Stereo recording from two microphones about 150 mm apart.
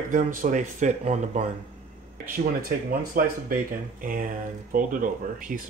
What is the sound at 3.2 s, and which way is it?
Speech, 75° right (ahead or behind).